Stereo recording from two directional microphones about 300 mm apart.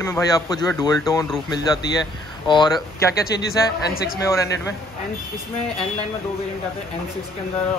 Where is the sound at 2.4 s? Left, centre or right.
Centre.